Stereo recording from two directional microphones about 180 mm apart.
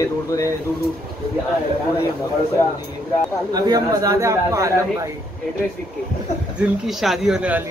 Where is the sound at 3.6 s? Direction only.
20° right (ahead or behind).